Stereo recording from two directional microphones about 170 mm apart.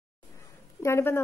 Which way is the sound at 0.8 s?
15° left (ahead or behind).